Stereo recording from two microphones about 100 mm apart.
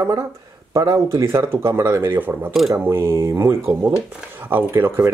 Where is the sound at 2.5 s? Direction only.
Centre (ahead or behind).